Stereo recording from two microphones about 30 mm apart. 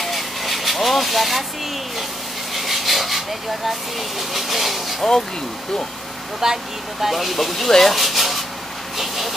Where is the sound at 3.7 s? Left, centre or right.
Centre.